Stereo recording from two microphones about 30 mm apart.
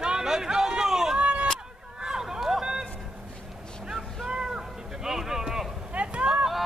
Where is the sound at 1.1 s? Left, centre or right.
Right.